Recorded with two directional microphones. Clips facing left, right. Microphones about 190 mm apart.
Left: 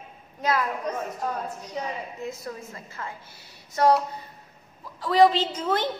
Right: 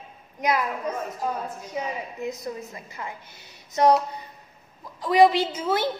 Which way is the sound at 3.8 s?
20° right (ahead or behind).